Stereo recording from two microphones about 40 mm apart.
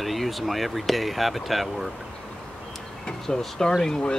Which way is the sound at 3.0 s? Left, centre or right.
Centre.